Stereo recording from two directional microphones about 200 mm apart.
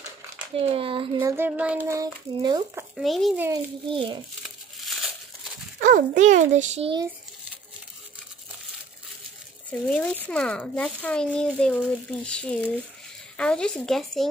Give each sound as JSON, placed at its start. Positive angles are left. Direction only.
{"t": 0.6, "sound": "a child's voice", "side_deg": -30}
{"t": 1.2, "sound": "a child's voice", "side_deg": -10}
{"t": 3.0, "sound": "a child's voice", "side_deg": 0}
{"t": 3.9, "sound": "a child's voice", "side_deg": -25}
{"t": 4.4, "sound": "crumpling", "side_deg": 0}
{"t": 5.8, "sound": "a child's voice", "side_deg": -40}
{"t": 9.7, "sound": "a child's voice", "side_deg": 5}